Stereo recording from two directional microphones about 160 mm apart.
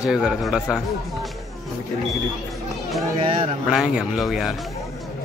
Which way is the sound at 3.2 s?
35° right (ahead or behind).